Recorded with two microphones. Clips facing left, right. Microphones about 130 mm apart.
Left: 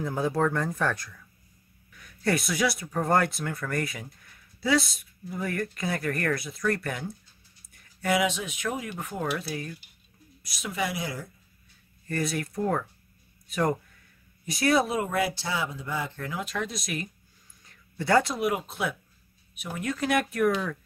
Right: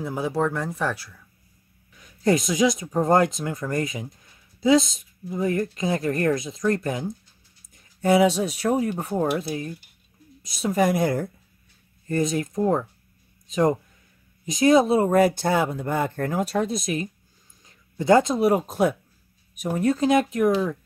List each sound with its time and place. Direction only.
0.0 s speech: 5° right (ahead or behind)
1.9 s speech: 20° right (ahead or behind)
9.4 s speech: 25° right (ahead or behind)
10.6 s speech: 45° right (ahead or behind)
12.1 s speech: 20° right (ahead or behind)
15.0 s speech: 40° right (ahead or behind); by 17.1 s 25° right (ahead or behind)
17.6 s a sound: 20° right (ahead or behind)
18.4 s speech: 35° right (ahead or behind); by 20.5 s 20° right (ahead or behind)